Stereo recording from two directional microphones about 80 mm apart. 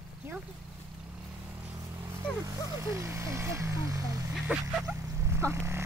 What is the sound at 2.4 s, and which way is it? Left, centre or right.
Speech, right.